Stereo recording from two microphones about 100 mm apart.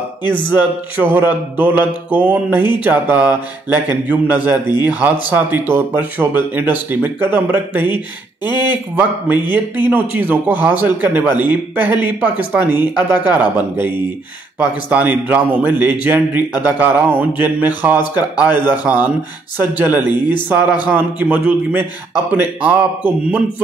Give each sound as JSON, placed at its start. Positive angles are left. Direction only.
{"t": 0.5, "sound": "mantra", "side_deg": -20}
{"t": 2.8, "sound": "speech", "side_deg": -15}
{"t": 4.8, "sound": "mantra", "side_deg": -20}
{"t": 8.5, "sound": "speech", "side_deg": 45}
{"t": 9.8, "sound": "speech", "side_deg": -20}
{"t": 15.8, "sound": "mantra", "side_deg": -20}
{"t": 17.2, "sound": "speech", "side_deg": -20}